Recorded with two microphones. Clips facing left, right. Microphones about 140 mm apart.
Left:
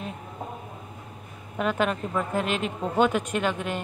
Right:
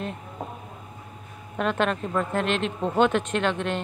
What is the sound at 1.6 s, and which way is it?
Speech, 5° left (ahead or behind).